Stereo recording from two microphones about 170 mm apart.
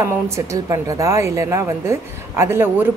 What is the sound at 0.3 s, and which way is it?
Speech, 20° right (ahead or behind).